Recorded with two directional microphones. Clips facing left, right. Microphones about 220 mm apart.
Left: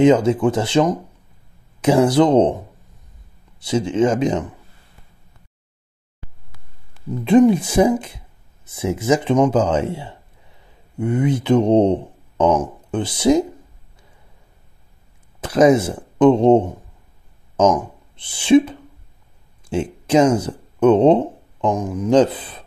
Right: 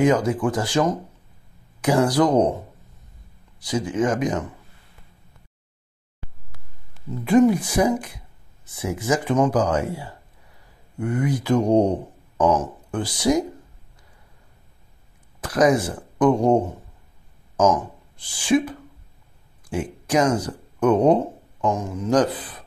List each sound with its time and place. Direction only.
0.0 s speech: 25° left (ahead or behind)
7.2 s speech: 25° left (ahead or behind)
15.4 s speech: 25° left (ahead or behind)
17.7 s speech: 25° left (ahead or behind)
21.7 s speech: 15° left (ahead or behind)